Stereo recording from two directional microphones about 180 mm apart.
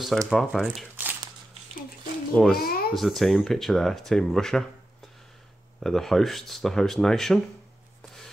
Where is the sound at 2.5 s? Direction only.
55° left (ahead or behind).